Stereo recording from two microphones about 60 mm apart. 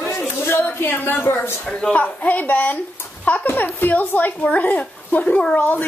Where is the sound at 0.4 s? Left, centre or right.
Left.